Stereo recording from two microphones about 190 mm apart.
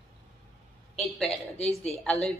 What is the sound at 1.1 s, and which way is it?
A woman's voice, 5° left (ahead or behind).